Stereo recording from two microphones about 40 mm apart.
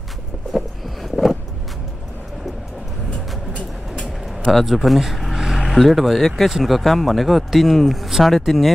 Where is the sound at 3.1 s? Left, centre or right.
Left.